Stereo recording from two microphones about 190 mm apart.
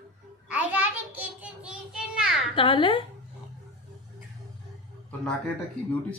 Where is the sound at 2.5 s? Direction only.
25° left (ahead or behind).